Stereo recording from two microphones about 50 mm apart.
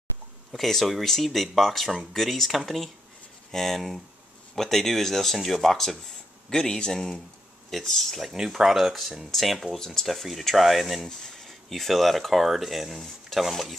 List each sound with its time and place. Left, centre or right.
0.5 s speech: centre
8.3 s speech: centre